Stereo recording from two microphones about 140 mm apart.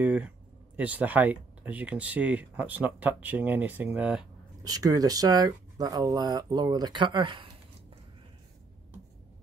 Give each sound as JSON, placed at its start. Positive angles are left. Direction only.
{"t": 0.0, "sound": "speech", "side_deg": -10}
{"t": 4.6, "sound": "speech", "side_deg": -25}